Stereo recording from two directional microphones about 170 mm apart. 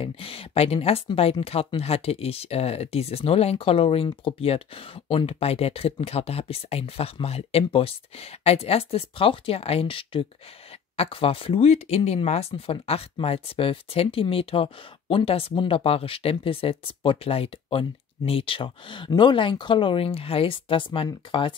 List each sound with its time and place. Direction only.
0.0 s speech: 35° left (ahead or behind)